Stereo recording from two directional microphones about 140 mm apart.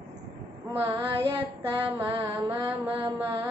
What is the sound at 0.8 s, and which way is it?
Music, 40° right (ahead or behind).